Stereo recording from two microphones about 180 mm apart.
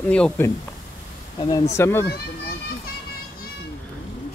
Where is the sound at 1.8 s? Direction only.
15° left (ahead or behind).